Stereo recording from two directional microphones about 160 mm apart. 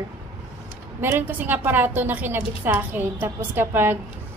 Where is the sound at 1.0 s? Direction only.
15° right (ahead or behind).